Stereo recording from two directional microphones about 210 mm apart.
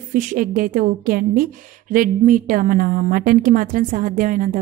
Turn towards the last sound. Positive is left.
turn(degrees=-40)  # may be behind; listen again after turning